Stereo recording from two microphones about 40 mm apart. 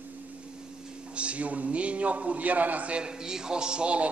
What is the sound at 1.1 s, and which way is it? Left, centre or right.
A man's voice, right.